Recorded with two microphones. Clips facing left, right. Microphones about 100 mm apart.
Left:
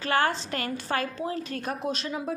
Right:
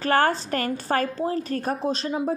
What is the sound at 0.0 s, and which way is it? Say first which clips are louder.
A woman's voice: right 4 dB; 45° right (ahead or behind).